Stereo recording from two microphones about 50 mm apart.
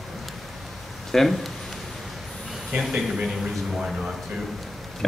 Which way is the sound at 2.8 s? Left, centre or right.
Centre.